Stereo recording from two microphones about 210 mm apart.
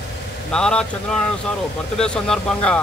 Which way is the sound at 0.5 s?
5° left (ahead or behind).